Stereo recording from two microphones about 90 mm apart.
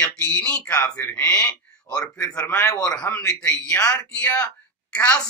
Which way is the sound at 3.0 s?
15° left (ahead or behind).